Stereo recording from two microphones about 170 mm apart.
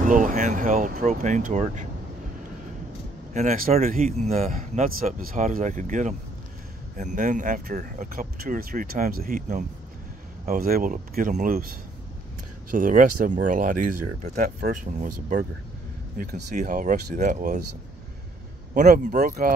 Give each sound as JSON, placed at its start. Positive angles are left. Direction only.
{"t": 0.0, "sound": "speech", "side_deg": -50}
{"t": 3.3, "sound": "speech", "side_deg": -50}
{"t": 12.7, "sound": "speech", "side_deg": -50}
{"t": 18.7, "sound": "speech", "side_deg": -45}